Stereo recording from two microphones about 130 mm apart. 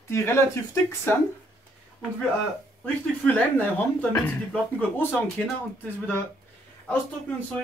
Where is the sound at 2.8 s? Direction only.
15° left (ahead or behind).